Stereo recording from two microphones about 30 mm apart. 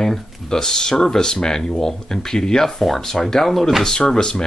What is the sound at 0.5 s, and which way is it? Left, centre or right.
Speech, left.